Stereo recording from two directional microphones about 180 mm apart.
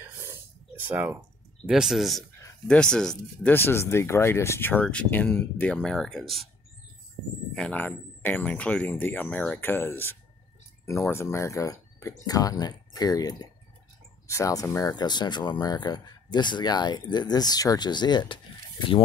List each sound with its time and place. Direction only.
0.0 s a sound: 15° right (ahead or behind)
0.8 s speech: 15° right (ahead or behind)
1.7 s speech: centre (ahead or behind)
7.5 s speech: 5° left (ahead or behind); by 19.0 s 30° left (ahead or behind)